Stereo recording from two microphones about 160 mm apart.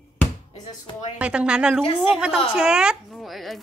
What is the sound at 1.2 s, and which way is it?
Speech, 5° right (ahead or behind).